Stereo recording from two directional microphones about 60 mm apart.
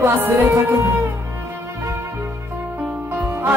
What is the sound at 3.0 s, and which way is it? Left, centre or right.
Music, right.